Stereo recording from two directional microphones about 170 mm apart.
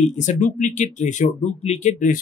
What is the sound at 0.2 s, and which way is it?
Speech, 45° left (ahead or behind).